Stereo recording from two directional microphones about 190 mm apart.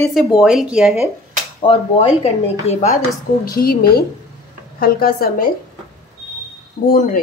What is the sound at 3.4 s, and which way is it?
A woman's voice, 50° left (ahead or behind).